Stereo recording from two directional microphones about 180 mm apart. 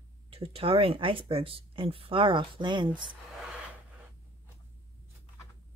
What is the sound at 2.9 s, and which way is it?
Speech, 5° right (ahead or behind).